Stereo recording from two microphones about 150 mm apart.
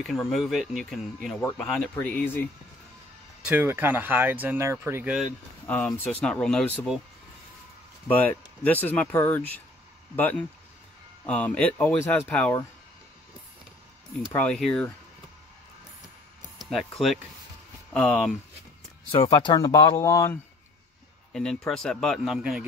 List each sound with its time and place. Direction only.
0.0 s speech: centre (ahead or behind)
3.4 s speech: 15° right (ahead or behind)
5.7 s speech: 10° left (ahead or behind)
8.1 s speech: 10° left (ahead or behind)
11.2 s speech: 10° left (ahead or behind)
14.3 s speech: 5° left (ahead or behind)
16.7 s speech: centre (ahead or behind)
19.3 s speech: 25° left (ahead or behind)
21.3 s speech: 5° left (ahead or behind)